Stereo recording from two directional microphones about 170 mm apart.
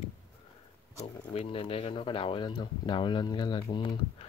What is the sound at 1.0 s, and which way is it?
Speech, 35° left (ahead or behind).